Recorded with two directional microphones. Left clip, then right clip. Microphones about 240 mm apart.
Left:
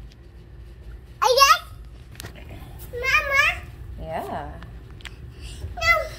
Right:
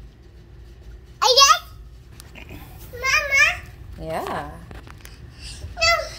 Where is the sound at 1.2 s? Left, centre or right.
Centre.